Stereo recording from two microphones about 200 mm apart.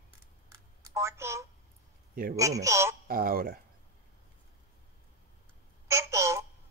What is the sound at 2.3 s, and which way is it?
Speech, 15° right (ahead or behind).